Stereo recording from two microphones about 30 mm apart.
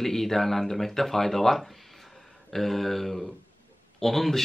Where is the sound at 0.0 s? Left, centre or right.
Centre.